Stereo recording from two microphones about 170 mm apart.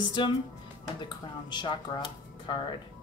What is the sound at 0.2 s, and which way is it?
Speech, 30° left (ahead or behind).